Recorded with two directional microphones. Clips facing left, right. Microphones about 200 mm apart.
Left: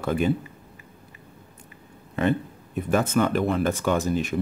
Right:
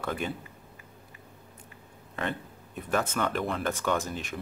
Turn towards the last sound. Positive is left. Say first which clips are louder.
# left 7 dB
turn(degrees=10)  # may be behind; listen again after turning